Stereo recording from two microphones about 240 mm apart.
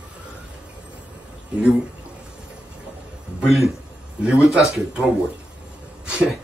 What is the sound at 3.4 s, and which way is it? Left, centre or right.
Speech, centre.